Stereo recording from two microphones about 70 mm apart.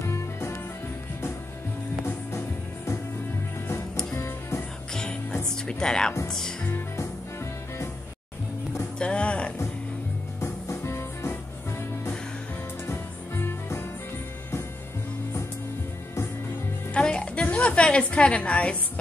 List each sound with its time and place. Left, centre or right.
0.0 s music: left
2.0 s music: left
4.1 s music: left
4.9 s music: centre
5.7 s speech: centre
6.2 s music: centre
8.9 s music: centre
10.4 s music: left
12.8 s music: left
16.9 s music: centre